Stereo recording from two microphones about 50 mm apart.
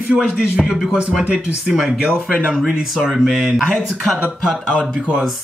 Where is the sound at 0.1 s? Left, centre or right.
Centre.